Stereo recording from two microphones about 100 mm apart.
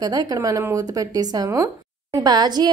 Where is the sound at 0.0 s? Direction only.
40° right (ahead or behind).